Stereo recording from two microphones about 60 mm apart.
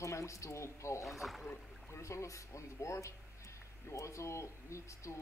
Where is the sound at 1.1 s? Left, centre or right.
Centre.